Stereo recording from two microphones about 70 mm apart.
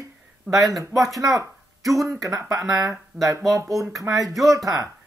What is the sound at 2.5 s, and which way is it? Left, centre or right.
Speech, right.